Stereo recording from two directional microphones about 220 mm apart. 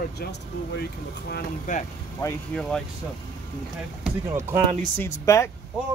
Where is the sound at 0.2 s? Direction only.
45° left (ahead or behind).